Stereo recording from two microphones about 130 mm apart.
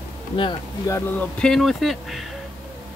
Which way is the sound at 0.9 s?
20° left (ahead or behind).